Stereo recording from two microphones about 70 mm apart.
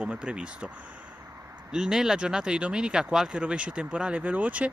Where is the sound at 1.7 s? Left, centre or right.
Centre.